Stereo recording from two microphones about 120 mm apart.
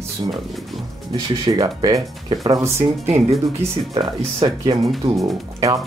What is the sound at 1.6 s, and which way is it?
Speech, 35° right (ahead or behind).